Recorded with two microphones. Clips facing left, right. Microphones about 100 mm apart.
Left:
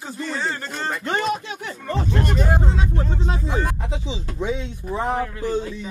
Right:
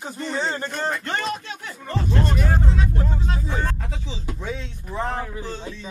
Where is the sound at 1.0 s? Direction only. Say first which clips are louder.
Left 4 dB; 15° left (ahead or behind).